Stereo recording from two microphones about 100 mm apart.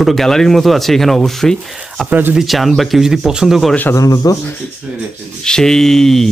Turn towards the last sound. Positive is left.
turn(degrees=5)  # may be behind; listen again after turning